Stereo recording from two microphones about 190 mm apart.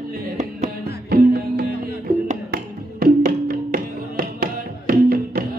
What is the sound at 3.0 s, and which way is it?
Music, 50° right (ahead or behind).